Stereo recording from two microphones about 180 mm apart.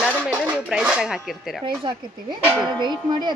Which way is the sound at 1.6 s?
25° right (ahead or behind).